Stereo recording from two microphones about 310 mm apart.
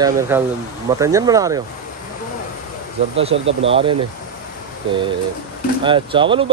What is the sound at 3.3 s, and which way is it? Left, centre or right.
Speech, right.